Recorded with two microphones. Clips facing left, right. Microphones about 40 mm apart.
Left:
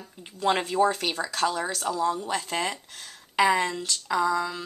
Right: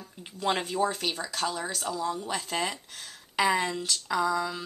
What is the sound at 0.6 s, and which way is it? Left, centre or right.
Speech, centre.